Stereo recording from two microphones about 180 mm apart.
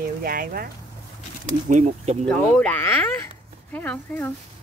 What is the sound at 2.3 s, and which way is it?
Speech, 5° left (ahead or behind).